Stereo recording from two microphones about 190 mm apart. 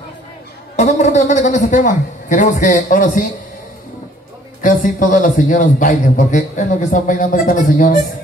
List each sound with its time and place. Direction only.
0.7 s a woman's voice: 35° left (ahead or behind)
4.6 s a man's voice: 45° left (ahead or behind)